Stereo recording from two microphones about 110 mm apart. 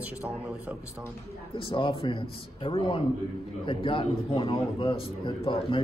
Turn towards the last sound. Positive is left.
turn(degrees=50)  # may be behind; listen again after turning